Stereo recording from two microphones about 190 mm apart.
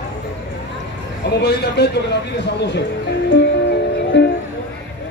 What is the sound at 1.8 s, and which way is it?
Speech, 60° left (ahead or behind).